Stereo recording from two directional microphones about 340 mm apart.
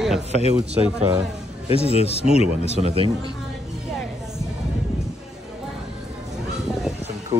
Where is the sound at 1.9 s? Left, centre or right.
Centre.